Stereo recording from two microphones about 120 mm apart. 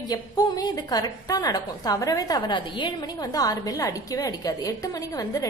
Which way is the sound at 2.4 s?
45° left (ahead or behind).